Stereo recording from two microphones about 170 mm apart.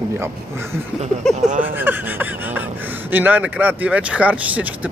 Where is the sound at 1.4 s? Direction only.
45° right (ahead or behind).